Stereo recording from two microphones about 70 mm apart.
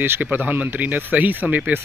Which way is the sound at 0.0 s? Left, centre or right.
Right.